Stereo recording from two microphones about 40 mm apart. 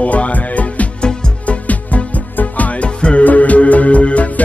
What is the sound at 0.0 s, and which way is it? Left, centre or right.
Music, left.